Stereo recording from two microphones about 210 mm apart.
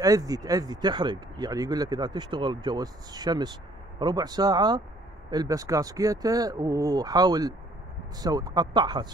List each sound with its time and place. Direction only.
0.0 s speech: 15° right (ahead or behind)